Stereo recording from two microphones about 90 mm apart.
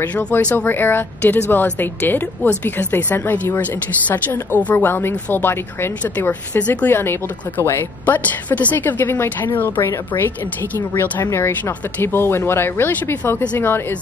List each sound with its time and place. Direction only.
0.0 s a woman's voice: 20° left (ahead or behind)